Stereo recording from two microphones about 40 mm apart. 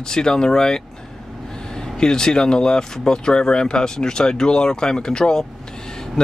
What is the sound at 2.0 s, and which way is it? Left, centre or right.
Speech, centre.